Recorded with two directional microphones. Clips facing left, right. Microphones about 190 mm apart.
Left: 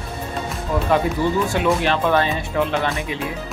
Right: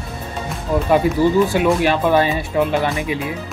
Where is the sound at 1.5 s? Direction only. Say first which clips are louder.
Right 3 dB; 10° right (ahead or behind).